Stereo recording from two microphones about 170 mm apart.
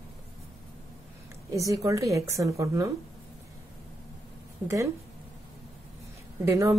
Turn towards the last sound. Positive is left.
turn(degrees=-20)  # may be behind; listen again after turning